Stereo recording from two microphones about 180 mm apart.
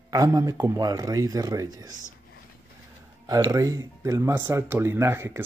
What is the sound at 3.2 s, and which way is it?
Speech, 20° right (ahead or behind).